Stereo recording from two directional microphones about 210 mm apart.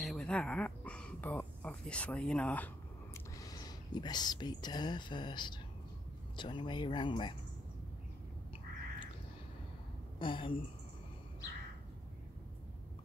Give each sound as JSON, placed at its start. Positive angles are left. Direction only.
{"t": 0.0, "sound": "speech", "side_deg": 0}
{"t": 3.3, "sound": "speech", "side_deg": 20}
{"t": 10.1, "sound": "a woman's voice", "side_deg": 25}